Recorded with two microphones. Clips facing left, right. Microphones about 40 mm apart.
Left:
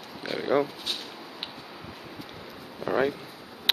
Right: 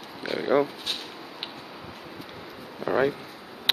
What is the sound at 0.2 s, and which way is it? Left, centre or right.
Speech, centre.